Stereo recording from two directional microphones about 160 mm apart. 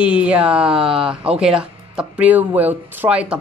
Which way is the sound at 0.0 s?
5° right (ahead or behind).